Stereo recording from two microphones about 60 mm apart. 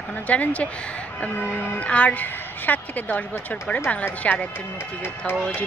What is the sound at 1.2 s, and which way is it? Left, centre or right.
Music, left.